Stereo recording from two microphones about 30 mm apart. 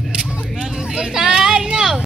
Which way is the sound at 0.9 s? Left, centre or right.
Right.